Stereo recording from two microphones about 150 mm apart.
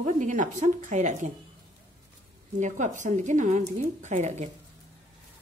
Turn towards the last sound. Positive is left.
turn(degrees=-50)  # may be behind; listen again after turning